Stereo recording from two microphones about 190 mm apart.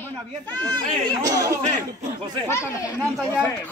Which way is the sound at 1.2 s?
20° right (ahead or behind).